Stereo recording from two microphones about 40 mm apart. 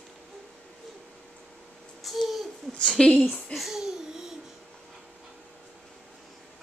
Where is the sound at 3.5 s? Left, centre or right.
Centre.